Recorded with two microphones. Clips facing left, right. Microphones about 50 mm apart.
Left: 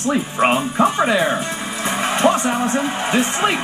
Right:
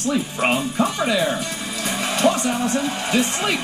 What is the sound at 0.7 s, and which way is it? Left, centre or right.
Speech, left.